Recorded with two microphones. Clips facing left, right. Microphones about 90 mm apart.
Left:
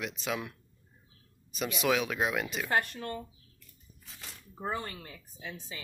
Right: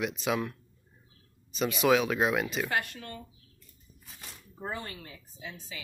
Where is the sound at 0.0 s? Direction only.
5° right (ahead or behind).